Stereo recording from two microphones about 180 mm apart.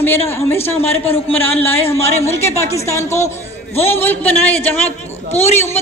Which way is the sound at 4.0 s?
10° left (ahead or behind).